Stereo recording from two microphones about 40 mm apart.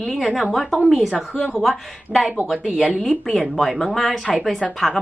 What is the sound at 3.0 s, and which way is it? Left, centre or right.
Speech, centre.